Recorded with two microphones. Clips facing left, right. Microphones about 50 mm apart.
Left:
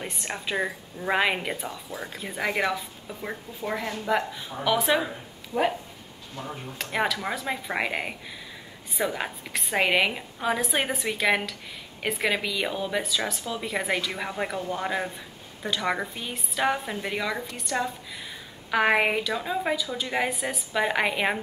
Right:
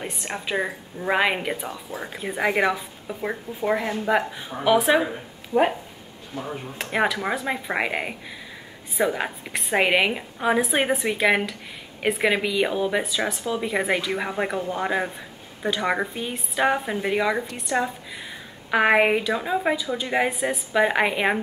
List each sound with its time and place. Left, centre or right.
0.0 s a woman's voice: centre